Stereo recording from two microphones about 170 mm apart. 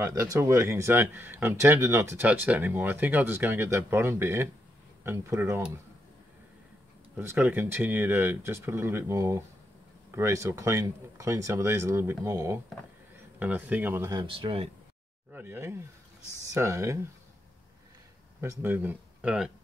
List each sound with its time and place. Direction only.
0.0 s speech: 15° right (ahead or behind)
7.2 s speech: 10° right (ahead or behind)
14.1 s speech: 30° right (ahead or behind)
15.3 s speech: 15° right (ahead or behind)
18.4 s speech: 15° right (ahead or behind)